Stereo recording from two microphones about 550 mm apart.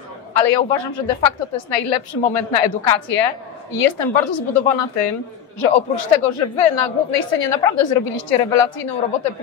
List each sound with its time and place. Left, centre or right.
0.3 s a woman's voice: left